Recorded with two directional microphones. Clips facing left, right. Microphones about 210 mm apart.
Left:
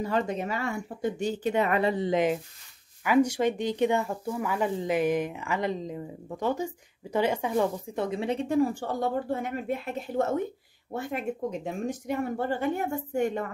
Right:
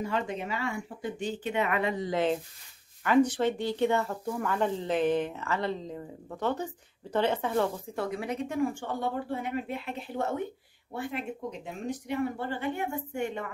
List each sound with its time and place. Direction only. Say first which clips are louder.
0.0 s speech: left 4 dB; 40° left (ahead or behind)
2.0 s speech: left 3 dB; 15° left (ahead or behind); by 13.5 s 40° left (ahead or behind)